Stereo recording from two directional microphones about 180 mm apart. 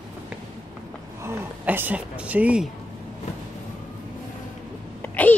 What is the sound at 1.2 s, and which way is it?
Speech, 10° right (ahead or behind).